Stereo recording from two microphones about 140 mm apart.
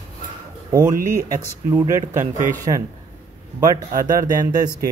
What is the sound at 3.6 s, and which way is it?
Speech, 25° right (ahead or behind).